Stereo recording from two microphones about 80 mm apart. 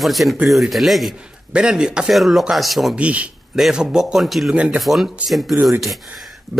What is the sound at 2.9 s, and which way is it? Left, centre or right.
Speech, centre.